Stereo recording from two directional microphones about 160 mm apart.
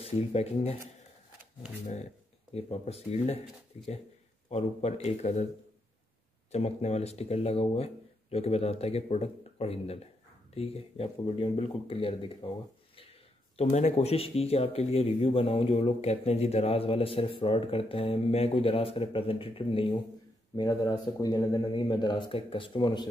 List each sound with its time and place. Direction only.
0.0 s speech: 40° left (ahead or behind)
2.5 s speech: 40° left (ahead or behind)
6.5 s speech: 40° left (ahead or behind)
13.6 s speech: 45° left (ahead or behind); by 23.0 s 30° left (ahead or behind)